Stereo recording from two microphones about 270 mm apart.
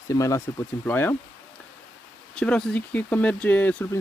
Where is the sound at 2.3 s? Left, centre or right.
Centre.